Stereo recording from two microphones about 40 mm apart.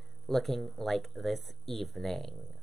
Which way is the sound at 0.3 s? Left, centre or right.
Centre.